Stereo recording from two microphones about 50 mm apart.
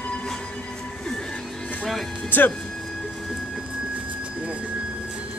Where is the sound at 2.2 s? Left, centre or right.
Left.